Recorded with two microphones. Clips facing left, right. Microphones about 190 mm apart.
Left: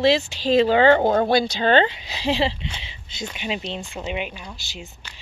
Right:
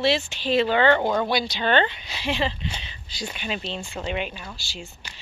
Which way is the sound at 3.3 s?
20° left (ahead or behind).